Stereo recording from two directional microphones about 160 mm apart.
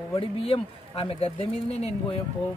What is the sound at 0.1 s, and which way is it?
Speech, 35° left (ahead or behind).